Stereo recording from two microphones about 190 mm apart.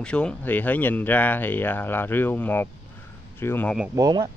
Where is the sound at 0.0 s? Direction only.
5° left (ahead or behind).